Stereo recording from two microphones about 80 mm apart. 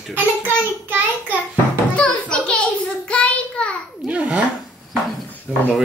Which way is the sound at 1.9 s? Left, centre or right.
Centre.